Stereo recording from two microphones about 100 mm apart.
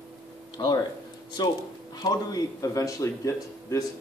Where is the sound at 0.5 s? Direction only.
45° left (ahead or behind).